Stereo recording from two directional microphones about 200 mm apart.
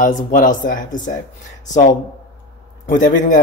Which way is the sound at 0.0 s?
40° left (ahead or behind).